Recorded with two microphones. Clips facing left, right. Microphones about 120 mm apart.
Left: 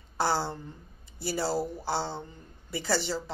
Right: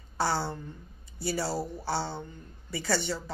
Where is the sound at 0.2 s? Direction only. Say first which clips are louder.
Left 1 dB; 25° left (ahead or behind).